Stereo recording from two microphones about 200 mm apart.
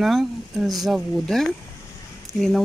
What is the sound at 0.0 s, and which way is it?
Speech, centre (ahead or behind).